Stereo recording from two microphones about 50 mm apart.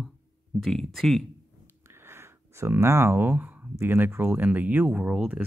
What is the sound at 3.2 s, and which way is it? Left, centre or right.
Speech, right.